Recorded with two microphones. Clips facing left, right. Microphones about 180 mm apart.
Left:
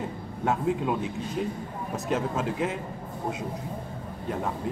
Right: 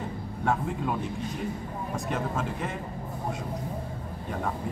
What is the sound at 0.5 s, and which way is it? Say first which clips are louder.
Speech: left 3 dB; 5° left (ahead or behind).